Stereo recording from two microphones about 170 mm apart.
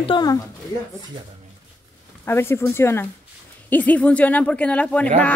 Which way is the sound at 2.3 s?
15° left (ahead or behind).